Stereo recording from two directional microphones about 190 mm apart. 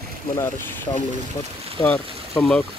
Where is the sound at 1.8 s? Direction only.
5° left (ahead or behind).